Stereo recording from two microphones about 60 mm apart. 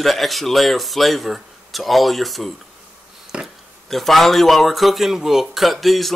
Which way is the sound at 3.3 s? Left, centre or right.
Centre.